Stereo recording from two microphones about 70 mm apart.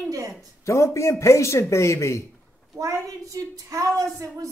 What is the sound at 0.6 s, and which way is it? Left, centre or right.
A man's voice, left.